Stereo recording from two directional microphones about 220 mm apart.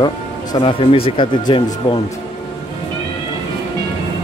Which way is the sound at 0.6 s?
25° left (ahead or behind).